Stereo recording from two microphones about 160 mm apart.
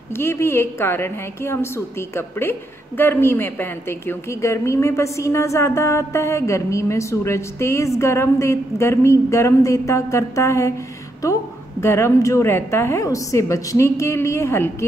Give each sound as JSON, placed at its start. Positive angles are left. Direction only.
{"t": 0.2, "sound": "a woman's voice", "side_deg": 15}